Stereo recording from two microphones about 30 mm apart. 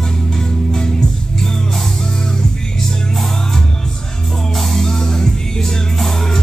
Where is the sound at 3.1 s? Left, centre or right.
Centre.